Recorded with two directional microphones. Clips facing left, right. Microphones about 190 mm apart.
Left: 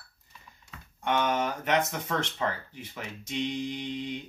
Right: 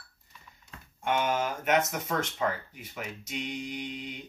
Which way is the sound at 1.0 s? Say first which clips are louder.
Left 1 dB; 10° right (ahead or behind).